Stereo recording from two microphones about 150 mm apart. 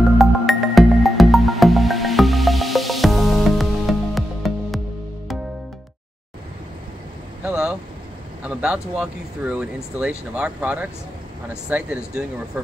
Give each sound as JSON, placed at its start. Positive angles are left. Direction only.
{"t": 0.2, "sound": "music", "side_deg": 0}
{"t": 7.4, "sound": "vehicle", "side_deg": -5}
{"t": 8.5, "sound": "speech", "side_deg": -10}